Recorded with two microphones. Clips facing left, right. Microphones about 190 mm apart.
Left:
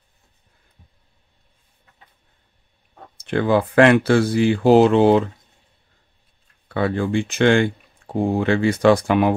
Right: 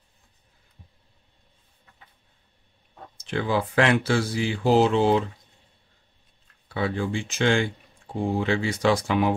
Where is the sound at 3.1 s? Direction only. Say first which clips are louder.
Left 7 dB; 55° left (ahead or behind).